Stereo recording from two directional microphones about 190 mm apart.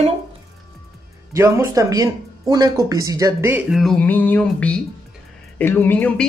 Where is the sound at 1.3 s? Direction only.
15° right (ahead or behind).